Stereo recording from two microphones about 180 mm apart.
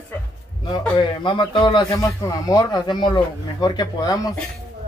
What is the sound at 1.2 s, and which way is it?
Speech, 25° left (ahead or behind).